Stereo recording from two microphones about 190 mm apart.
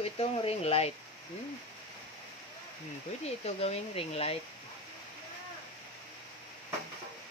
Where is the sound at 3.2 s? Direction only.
35° left (ahead or behind).